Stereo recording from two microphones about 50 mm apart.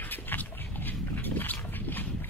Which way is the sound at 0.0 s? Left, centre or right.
Left.